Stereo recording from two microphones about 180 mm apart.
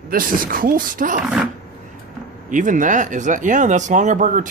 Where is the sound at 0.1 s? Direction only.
50° right (ahead or behind).